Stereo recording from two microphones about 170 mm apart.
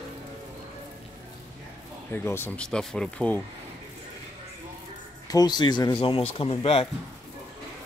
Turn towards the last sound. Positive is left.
turn(degrees=35)  # may be behind; listen again after turning